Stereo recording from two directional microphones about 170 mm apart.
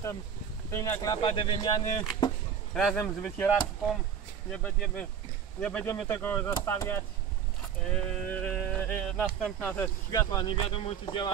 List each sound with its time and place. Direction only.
0.7 s speech: 20° left (ahead or behind)
2.7 s speech: 5° left (ahead or behind)
4.5 s speech: 5° left (ahead or behind); by 11.3 s 30° left (ahead or behind)